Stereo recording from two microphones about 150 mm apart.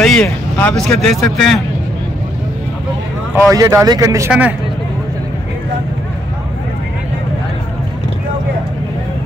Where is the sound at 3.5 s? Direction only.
20° right (ahead or behind).